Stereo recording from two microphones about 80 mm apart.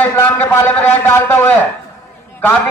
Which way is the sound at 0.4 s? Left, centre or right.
Left.